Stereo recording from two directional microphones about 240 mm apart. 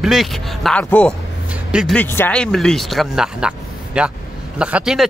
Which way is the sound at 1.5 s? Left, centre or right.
Centre.